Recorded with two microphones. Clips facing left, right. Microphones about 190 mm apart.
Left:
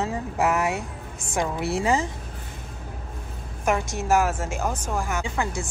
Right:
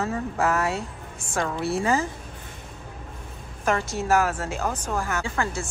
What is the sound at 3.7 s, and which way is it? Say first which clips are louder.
Speech: even; 10° left (ahead or behind).